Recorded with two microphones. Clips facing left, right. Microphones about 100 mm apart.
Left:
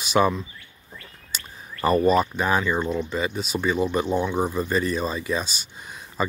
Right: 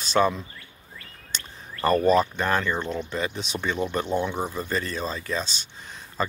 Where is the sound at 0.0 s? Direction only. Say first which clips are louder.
Left 1 dB; 10° left (ahead or behind).